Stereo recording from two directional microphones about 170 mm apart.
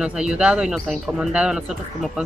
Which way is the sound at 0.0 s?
5° right (ahead or behind).